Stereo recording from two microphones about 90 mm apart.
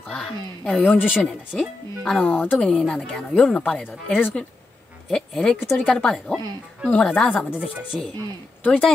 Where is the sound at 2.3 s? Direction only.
20° left (ahead or behind).